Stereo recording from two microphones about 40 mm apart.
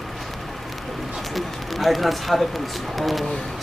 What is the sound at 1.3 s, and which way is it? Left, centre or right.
Speech, centre.